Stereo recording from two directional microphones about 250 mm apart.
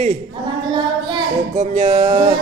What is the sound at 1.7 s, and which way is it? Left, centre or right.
Speech, right.